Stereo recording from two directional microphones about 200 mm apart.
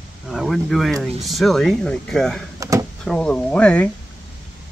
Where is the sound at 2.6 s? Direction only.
15° right (ahead or behind).